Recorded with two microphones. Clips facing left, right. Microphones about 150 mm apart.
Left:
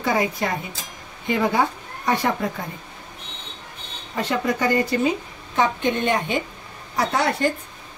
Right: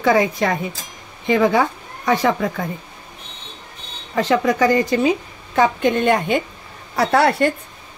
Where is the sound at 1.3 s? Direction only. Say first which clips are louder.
Right 5 dB; 90° right.